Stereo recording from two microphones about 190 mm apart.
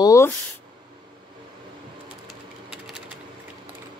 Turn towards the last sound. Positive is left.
turn(degrees=-5)  # may be behind; listen again after turning